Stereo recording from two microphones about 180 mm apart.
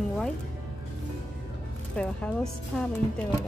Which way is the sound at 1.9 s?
5° left (ahead or behind).